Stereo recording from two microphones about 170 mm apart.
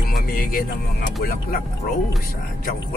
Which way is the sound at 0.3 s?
55° left (ahead or behind).